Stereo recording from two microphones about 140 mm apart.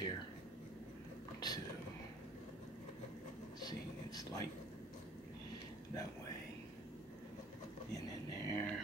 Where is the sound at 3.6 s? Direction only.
30° left (ahead or behind).